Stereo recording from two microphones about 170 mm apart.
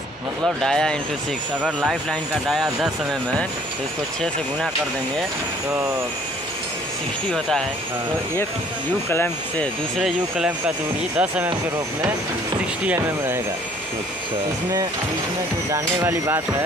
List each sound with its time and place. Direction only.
0.6 s speech: 5° left (ahead or behind)
7.3 s speech: centre (ahead or behind)
9.1 s speech: 10° left (ahead or behind)
9.9 s speech: centre (ahead or behind)
12.8 s speech: 15° right (ahead or behind)
15.7 s speech: 15° right (ahead or behind)